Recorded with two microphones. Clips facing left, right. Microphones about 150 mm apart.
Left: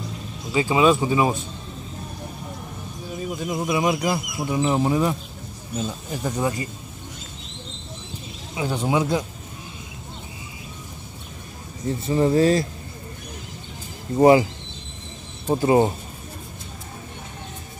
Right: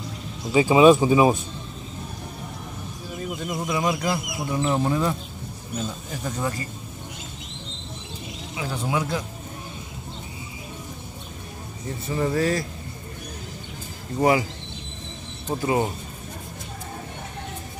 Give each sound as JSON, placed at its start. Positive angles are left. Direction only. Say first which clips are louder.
{"t": 0.5, "sound": "speech", "louder": "right 4 dB", "side_deg": -20}
{"t": 3.3, "sound": "speech", "louder": "left 4 dB", "side_deg": 10}
{"t": 6.2, "sound": "speech", "louder": "left 4 dB", "side_deg": 15}
{"t": 8.5, "sound": "speech", "louder": "left 5 dB", "side_deg": 25}
{"t": 12.1, "sound": "speech", "louder": "left 5 dB", "side_deg": 25}
{"t": 14.1, "sound": "speech", "louder": "left 6 dB", "side_deg": 30}
{"t": 15.4, "sound": "speech", "louder": "left 6 dB", "side_deg": 30}